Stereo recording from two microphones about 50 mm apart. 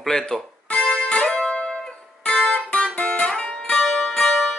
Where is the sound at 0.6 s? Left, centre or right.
Centre.